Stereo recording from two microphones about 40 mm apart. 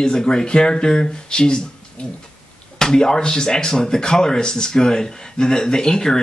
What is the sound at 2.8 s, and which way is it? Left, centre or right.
Speech, centre.